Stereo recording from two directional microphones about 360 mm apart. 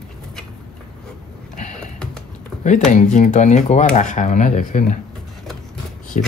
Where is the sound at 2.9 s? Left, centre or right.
Centre.